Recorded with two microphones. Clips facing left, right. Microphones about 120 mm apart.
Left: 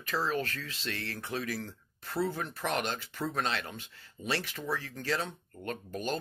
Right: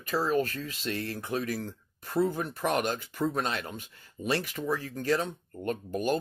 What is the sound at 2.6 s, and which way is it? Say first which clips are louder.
Speech: right 5 dB; 45° right (ahead or behind).